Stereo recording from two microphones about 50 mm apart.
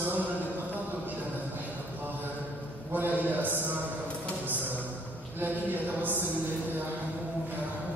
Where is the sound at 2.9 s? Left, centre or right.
Right.